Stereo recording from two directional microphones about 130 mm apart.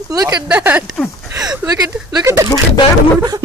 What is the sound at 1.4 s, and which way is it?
Speech, 25° right (ahead or behind).